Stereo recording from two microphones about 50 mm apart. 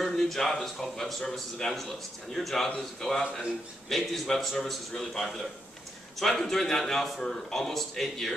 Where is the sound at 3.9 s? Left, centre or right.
Centre.